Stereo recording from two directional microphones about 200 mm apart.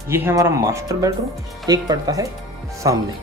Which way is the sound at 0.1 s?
10° right (ahead or behind).